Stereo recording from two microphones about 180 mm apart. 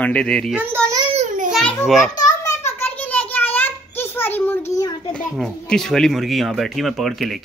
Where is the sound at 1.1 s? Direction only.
45° right (ahead or behind).